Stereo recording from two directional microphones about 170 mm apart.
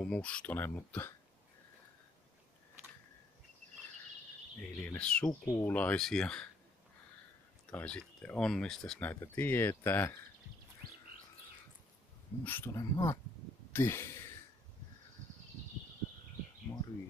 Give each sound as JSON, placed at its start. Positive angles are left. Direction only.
{"t": 0.0, "sound": "speech", "side_deg": 5}
{"t": 4.6, "sound": "speech", "side_deg": 5}
{"t": 5.4, "sound": "speech", "side_deg": 15}
{"t": 7.7, "sound": "speech", "side_deg": 5}
{"t": 12.4, "sound": "speech", "side_deg": 15}
{"t": 16.7, "sound": "speech", "side_deg": 25}